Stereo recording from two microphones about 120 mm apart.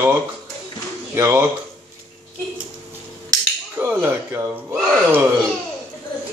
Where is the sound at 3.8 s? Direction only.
20° right (ahead or behind).